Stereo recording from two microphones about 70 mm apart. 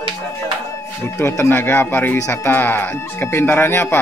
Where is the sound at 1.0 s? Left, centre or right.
Left.